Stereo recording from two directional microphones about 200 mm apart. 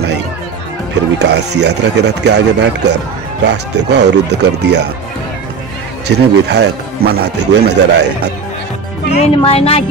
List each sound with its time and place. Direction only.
1.2 s speech: 60° right (ahead or behind)
6.0 s speech: 55° right (ahead or behind)
9.2 s speech: 30° left (ahead or behind)